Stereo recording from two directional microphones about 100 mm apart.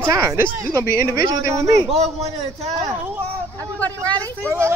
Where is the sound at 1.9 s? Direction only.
90° right.